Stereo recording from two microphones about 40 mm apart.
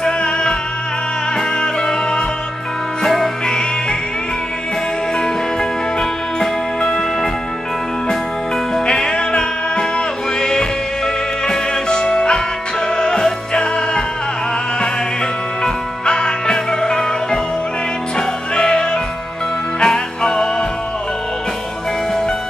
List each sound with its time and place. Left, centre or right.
0.0 s music: centre
5.2 s music: centre
8.8 s music: left
15.6 s music: centre